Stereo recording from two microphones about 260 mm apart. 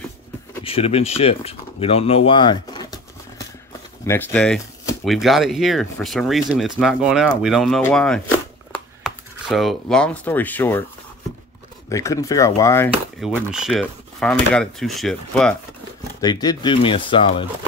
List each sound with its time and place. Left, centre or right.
0.7 s speech: left
4.0 s speech: centre
11.9 s speech: centre
13.2 s speech: centre
16.2 s speech: centre